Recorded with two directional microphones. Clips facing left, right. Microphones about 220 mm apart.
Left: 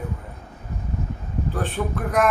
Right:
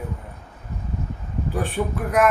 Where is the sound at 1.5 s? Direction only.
10° right (ahead or behind).